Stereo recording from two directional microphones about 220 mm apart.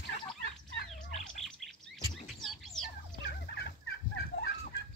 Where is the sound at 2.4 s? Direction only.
Centre (ahead or behind).